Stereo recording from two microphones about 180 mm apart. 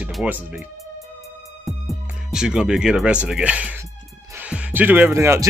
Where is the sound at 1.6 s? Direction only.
Centre (ahead or behind).